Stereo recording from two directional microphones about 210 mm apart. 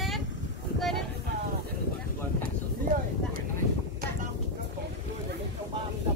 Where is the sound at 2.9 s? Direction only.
40° right (ahead or behind).